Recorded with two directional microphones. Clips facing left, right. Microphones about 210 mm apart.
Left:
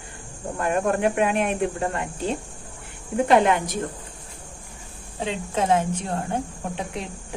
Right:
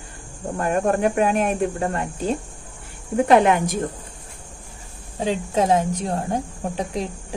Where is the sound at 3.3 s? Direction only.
50° right (ahead or behind).